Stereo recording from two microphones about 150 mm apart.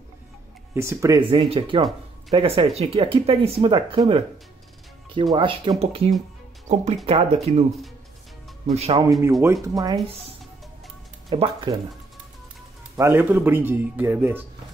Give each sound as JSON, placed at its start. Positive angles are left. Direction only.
{"t": 0.7, "sound": "speech", "side_deg": -20}
{"t": 1.2, "sound": "speech", "side_deg": -40}
{"t": 8.6, "sound": "speech", "side_deg": -45}
{"t": 9.4, "sound": "speech", "side_deg": -20}
{"t": 11.3, "sound": "speech", "side_deg": -40}
{"t": 12.9, "sound": "speech", "side_deg": -15}